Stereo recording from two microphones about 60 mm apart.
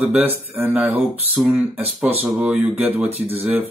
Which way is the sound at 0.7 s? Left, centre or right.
Right.